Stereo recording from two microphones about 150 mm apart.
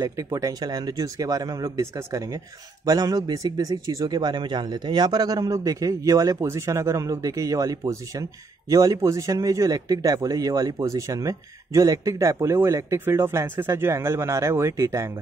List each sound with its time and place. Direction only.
0.0 s speech: 20° right (ahead or behind)